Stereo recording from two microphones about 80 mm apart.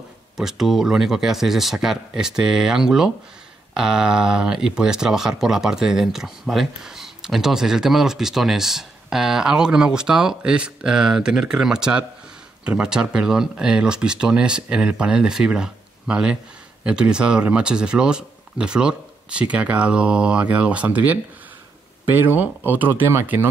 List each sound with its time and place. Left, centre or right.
0.4 s speech: centre; by 23.5 s right